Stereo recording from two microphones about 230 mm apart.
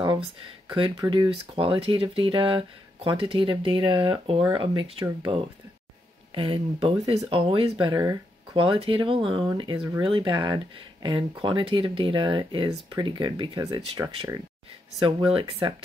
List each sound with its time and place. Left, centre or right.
1.0 s speech: centre